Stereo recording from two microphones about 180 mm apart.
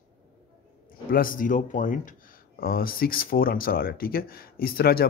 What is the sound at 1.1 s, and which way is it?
Speech, 50° left (ahead or behind).